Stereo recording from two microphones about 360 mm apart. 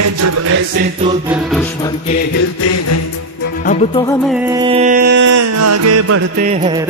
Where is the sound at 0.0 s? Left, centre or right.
Right.